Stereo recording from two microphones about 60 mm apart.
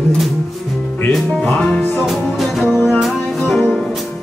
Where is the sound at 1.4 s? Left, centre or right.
Centre.